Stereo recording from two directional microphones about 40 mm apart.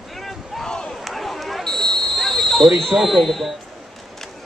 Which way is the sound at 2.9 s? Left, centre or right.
Centre.